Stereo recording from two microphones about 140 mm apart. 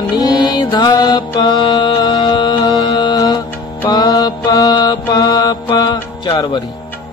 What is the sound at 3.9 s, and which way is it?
Mantra, 25° left (ahead or behind).